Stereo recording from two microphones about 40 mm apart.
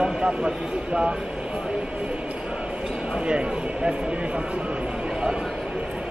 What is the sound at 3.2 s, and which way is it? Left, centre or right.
Speech, right.